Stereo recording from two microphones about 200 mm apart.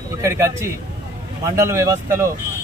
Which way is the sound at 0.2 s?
15° right (ahead or behind).